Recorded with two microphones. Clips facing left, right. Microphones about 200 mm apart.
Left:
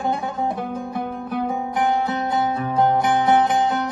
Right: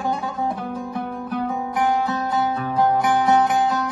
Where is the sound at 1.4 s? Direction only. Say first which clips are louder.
Even; 25° left (ahead or behind).